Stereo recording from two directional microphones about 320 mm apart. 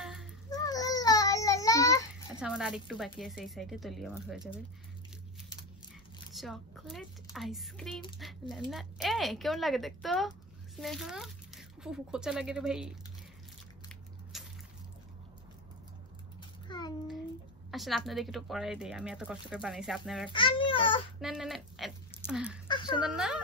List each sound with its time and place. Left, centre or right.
0.0 s a sound: centre
0.7 s baby cry: centre
2.4 s speech: centre
6.3 s a woman's voice: centre
14.3 s a sound: centre
16.6 s child singing: centre
17.6 s speech: centre
20.2 s a child's voice: centre
21.2 s speech: centre